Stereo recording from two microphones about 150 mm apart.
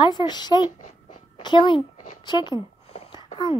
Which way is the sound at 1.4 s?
30° left (ahead or behind).